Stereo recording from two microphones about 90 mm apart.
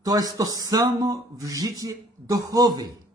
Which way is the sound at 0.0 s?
45° right (ahead or behind).